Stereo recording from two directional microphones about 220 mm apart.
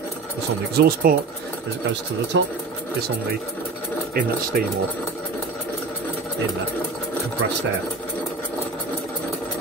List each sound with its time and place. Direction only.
0.7 s speech: 45° right (ahead or behind)
2.3 s speech: 55° right (ahead or behind)
4.5 s speech: 40° right (ahead or behind)